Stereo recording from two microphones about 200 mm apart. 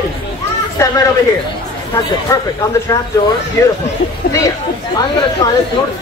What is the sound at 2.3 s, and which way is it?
Speech, 15° left (ahead or behind).